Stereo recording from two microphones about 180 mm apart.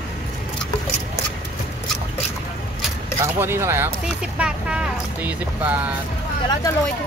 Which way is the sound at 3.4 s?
15° right (ahead or behind).